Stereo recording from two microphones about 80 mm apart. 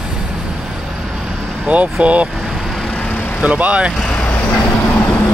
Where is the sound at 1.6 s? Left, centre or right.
Centre.